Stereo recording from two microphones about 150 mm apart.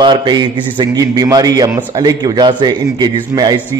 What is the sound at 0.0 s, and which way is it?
A man's voice, 30° right (ahead or behind).